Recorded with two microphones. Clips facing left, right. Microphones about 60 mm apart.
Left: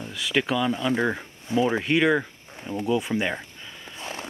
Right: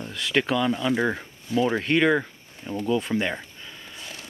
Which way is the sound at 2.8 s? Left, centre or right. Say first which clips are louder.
Even; centre.